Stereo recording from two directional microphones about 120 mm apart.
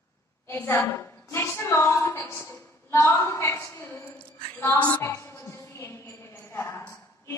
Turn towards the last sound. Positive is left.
turn(degrees=20)  # may be behind; listen again after turning